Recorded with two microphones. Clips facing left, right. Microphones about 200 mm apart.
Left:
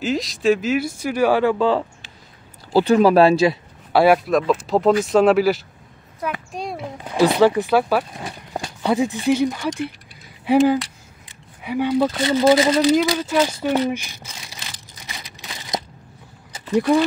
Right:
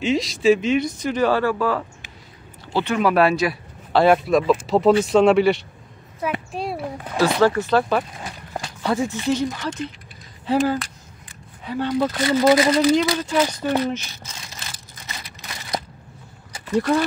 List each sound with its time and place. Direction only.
0.0 s speech: centre (ahead or behind); by 1.9 s 25° left (ahead or behind)
2.7 s speech: 35° left (ahead or behind)
3.9 s speech: 5° left (ahead or behind)
6.8 s speech: 15° left (ahead or behind)
12.2 s speech: 20° left (ahead or behind)
13.0 s a sound: 10° left (ahead or behind)
16.7 s speech: 15° left (ahead or behind)